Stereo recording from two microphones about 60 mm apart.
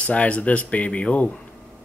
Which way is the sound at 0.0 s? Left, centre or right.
Left.